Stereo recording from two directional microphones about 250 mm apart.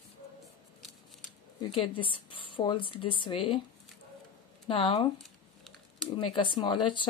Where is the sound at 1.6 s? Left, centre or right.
Centre.